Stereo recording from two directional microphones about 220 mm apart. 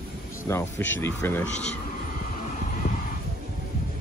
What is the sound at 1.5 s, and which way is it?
Speech, 30° left (ahead or behind).